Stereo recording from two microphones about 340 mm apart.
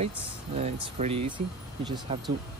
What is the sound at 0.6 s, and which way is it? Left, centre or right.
Speech, centre.